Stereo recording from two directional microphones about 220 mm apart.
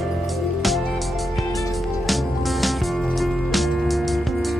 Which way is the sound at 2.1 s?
Centre (ahead or behind).